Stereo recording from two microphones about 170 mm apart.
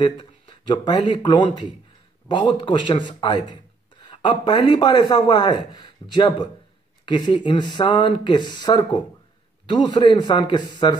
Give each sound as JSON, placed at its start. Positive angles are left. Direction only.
{"t": 0.0, "sound": "a man's voice", "side_deg": 30}